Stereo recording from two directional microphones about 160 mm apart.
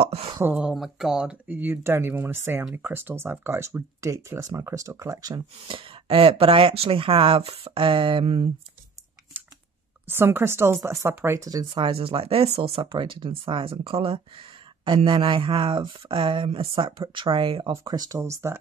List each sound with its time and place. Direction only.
0.0 s speech: 40° right (ahead or behind)
0.3 s speech: 15° right (ahead or behind)
0.6 s speech: 5° right (ahead or behind)
5.7 s speech: 35° right (ahead or behind)
10.0 s speech: 15° right (ahead or behind)
11.7 s speech: 35° right (ahead or behind); by 18.6 s 15° right (ahead or behind)